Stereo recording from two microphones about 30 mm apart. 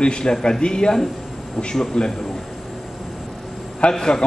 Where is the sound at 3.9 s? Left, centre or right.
Left.